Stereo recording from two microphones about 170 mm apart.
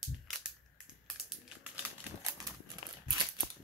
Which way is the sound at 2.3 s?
20° right (ahead or behind).